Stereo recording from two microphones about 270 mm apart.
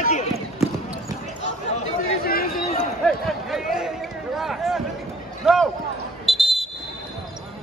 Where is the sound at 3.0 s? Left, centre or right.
Centre.